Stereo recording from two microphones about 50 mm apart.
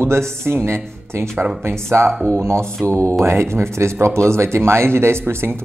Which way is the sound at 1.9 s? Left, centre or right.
Right.